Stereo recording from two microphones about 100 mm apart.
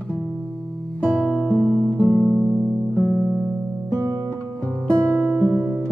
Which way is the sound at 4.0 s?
35° right (ahead or behind).